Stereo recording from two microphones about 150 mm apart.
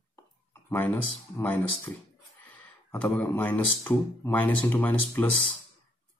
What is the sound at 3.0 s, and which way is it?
Speech, 10° left (ahead or behind).